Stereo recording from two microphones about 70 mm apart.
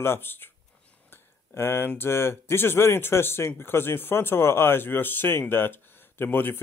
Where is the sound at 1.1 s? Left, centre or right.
Left.